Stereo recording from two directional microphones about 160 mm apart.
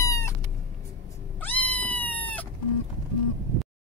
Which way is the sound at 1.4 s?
10° left (ahead or behind).